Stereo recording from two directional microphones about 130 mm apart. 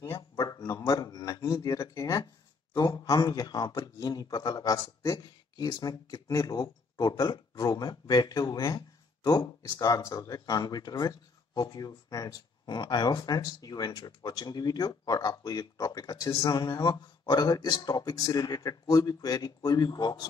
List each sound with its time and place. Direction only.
0.6 s a man's voice: 25° left (ahead or behind)